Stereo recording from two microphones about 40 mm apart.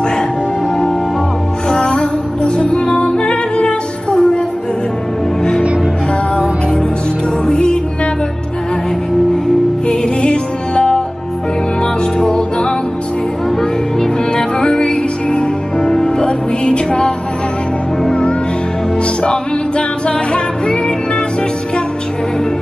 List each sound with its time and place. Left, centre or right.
1.7 s music: left
7.4 s music: left
9.8 s music: left
12.2 s music: left
14.3 s music: left
20.1 s music: left